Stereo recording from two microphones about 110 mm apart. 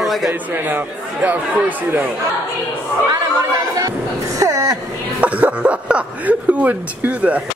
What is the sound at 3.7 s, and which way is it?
Music, 30° right (ahead or behind).